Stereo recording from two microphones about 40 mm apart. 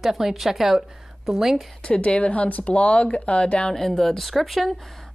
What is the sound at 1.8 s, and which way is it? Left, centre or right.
Speech, left.